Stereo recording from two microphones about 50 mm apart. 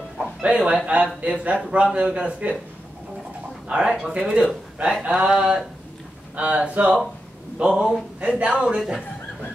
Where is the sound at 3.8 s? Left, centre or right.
Centre.